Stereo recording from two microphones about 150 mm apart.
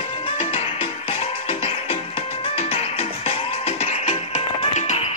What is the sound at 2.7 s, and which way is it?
Music, 40° left (ahead or behind).